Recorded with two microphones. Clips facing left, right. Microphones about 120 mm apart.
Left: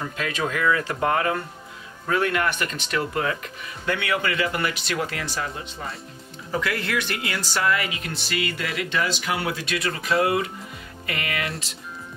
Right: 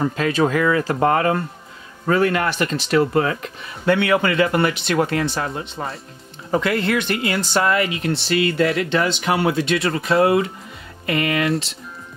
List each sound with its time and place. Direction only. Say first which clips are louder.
0.1 s speech: right 8 dB; 35° right (ahead or behind)
4.8 s speech: right 8 dB; 55° right (ahead or behind)
5.8 s speech: right 6 dB; 45° right (ahead or behind)
6.5 s speech: right 7 dB; 25° right (ahead or behind)